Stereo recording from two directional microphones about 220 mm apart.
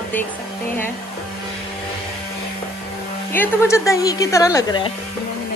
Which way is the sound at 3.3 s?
10° left (ahead or behind).